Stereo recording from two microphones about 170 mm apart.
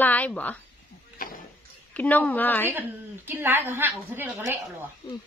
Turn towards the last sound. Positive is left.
turn(degrees=-15)  # may be behind; listen again after turning